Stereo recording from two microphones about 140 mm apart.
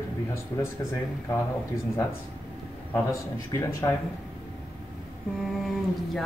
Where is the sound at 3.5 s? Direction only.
20° left (ahead or behind).